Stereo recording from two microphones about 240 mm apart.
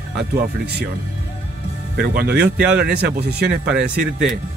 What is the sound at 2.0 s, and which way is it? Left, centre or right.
Speech, right.